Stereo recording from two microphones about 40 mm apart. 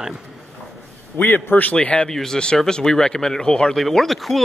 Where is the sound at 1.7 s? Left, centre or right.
Left.